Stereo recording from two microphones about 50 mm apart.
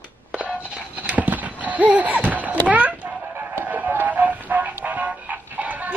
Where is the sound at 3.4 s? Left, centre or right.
Right.